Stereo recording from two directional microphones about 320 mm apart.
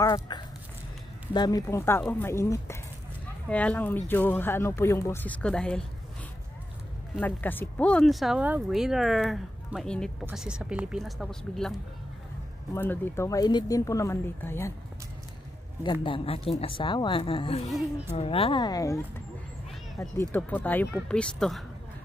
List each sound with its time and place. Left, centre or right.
0.0 s speech: centre
7.2 s speech: centre
12.7 s speech: centre
15.8 s speech: centre
20.0 s speech: centre